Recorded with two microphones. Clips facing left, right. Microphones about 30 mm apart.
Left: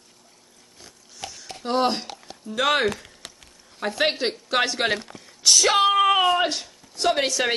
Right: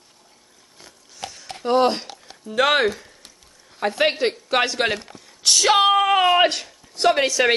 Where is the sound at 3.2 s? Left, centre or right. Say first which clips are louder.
Left 6 dB; left.